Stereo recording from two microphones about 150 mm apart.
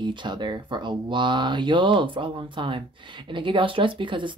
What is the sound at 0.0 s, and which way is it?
Speech, 30° right (ahead or behind).